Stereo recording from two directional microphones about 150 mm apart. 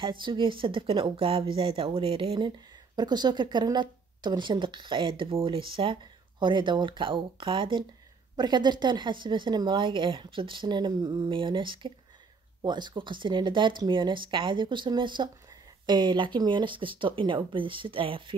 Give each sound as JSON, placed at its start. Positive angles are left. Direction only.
{"t": 0.0, "sound": "a woman's voice", "side_deg": -35}